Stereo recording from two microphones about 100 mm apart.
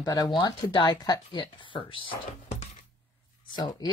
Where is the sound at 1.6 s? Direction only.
60° left (ahead or behind).